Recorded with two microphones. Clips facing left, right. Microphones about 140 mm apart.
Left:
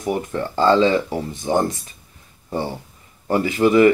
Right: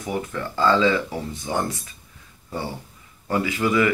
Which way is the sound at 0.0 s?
35° left (ahead or behind).